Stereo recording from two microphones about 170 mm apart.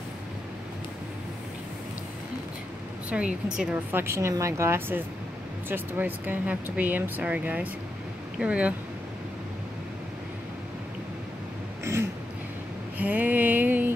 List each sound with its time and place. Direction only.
3.1 s speech: 5° right (ahead or behind)
11.8 s throat clearing: 15° right (ahead or behind)
12.9 s a sound: 10° right (ahead or behind)